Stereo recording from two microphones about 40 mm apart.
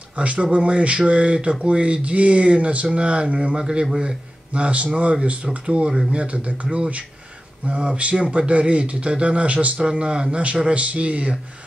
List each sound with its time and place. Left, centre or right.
0.1 s speech: right
4.6 s speech: right
9.8 s speech: right